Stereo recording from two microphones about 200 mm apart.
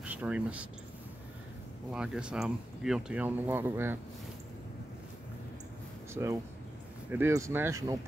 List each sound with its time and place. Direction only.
0.0 s speech: 5° right (ahead or behind)
1.9 s speech: 5° right (ahead or behind)
6.2 s speech: 15° right (ahead or behind)